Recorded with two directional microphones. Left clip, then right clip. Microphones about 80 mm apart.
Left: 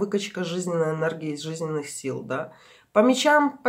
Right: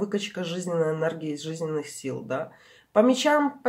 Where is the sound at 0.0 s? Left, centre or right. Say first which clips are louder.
Left 2 dB; centre.